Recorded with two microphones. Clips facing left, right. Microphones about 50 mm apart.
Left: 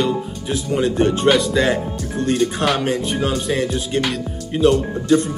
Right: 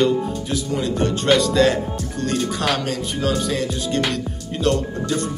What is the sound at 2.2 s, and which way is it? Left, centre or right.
Music, left.